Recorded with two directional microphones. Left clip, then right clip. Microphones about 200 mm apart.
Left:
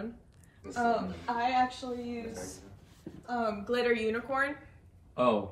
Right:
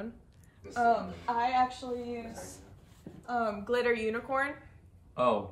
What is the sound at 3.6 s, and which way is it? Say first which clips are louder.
Speech: left 2 dB; 35° right (ahead or behind).